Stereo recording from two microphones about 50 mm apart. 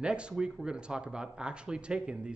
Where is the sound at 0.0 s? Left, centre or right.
Right.